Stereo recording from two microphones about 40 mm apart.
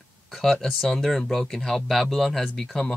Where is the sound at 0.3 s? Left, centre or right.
Centre.